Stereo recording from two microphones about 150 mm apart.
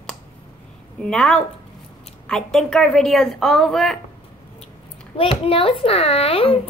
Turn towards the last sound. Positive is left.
turn(degrees=40)  # may be behind; listen again after turning